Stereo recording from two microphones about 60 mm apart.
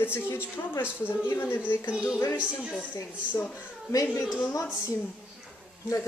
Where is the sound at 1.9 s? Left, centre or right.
Centre.